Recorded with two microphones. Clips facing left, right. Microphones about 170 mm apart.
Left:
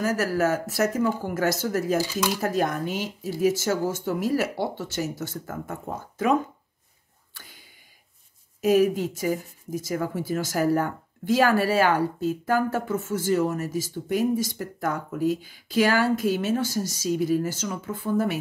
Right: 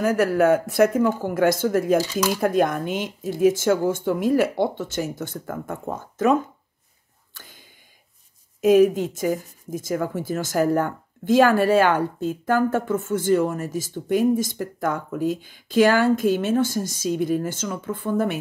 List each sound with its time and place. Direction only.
0.0 s speech: 55° right (ahead or behind)
8.5 s speech: 50° right (ahead or behind)